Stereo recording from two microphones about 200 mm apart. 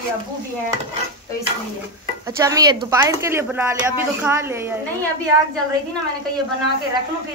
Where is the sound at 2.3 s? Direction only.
15° right (ahead or behind).